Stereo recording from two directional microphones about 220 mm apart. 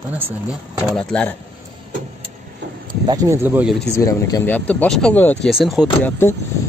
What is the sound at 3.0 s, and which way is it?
Speech, 15° right (ahead or behind).